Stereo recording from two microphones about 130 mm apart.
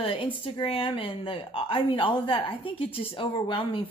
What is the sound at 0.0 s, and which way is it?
A woman's voice, 45° left (ahead or behind).